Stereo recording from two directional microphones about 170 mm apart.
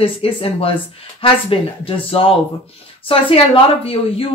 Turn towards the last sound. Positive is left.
turn(degrees=35)  # may be behind; listen again after turning